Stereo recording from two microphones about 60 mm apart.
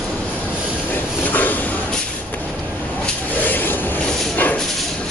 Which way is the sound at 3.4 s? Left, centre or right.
Left.